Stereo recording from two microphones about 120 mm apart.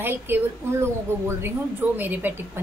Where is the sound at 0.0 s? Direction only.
20° right (ahead or behind).